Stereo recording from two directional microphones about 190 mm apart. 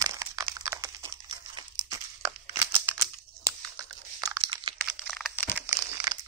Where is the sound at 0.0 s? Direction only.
15° right (ahead or behind).